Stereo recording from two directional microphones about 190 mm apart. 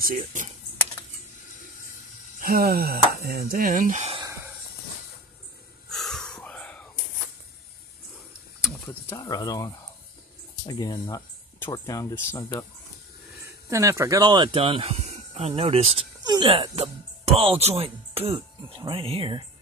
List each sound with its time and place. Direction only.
0.0 s speech: 45° right (ahead or behind)
2.4 s speech: 50° right (ahead or behind)
5.9 s a sound: centre (ahead or behind)
9.1 s speech: 20° left (ahead or behind)
10.7 s speech: 20° left (ahead or behind)
13.4 s speech: 15° right (ahead or behind)